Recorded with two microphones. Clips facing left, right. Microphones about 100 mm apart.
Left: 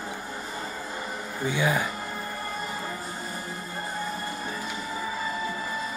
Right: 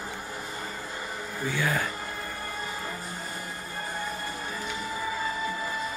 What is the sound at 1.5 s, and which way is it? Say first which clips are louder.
Speech: left 3 dB; 15° left (ahead or behind).